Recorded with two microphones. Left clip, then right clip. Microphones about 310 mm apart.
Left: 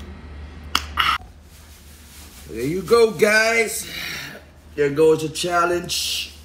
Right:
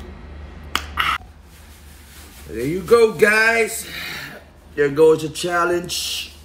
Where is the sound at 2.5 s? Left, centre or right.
Centre.